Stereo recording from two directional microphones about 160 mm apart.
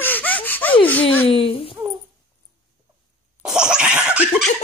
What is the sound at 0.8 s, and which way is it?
Speech, 10° left (ahead or behind).